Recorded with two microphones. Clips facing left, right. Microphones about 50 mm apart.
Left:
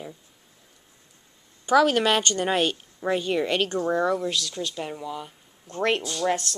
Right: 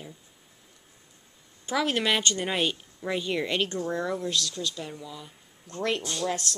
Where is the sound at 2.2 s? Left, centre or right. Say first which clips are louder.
Left 3 dB; left.